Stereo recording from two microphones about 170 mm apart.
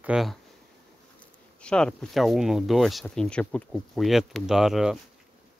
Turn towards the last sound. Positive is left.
turn(degrees=0)  # may be behind; listen again after turning